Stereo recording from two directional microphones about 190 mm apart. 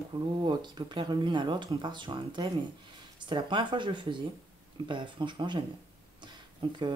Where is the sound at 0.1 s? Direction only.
25° right (ahead or behind).